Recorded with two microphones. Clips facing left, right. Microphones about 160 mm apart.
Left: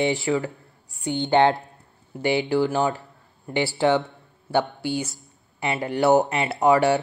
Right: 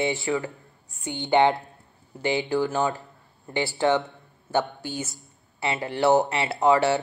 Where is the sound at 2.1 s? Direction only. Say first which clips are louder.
Left 3 dB; 15° left (ahead or behind).